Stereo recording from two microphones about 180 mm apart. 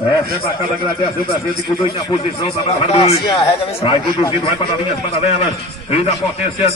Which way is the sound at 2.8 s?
35° left (ahead or behind).